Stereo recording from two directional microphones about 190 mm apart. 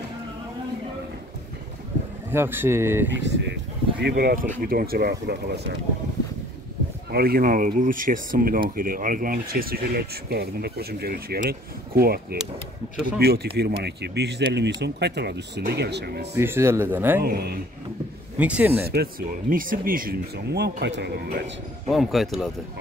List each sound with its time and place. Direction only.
2.3 s speech: 10° right (ahead or behind)
3.1 s speech: 70° right (ahead or behind)
4.0 s speech: 50° right (ahead or behind)
7.1 s speech: 55° right (ahead or behind)
16.3 s speech: 15° right (ahead or behind)
17.2 s speech: 55° right (ahead or behind)
18.4 s speech: 10° right (ahead or behind)
18.9 s speech: 50° right (ahead or behind)
21.8 s speech: centre (ahead or behind)